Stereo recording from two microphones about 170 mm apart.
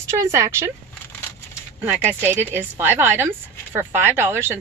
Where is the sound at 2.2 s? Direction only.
10° right (ahead or behind).